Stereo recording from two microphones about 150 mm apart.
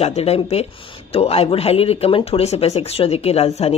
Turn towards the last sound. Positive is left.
turn(degrees=45)  # may be behind; listen again after turning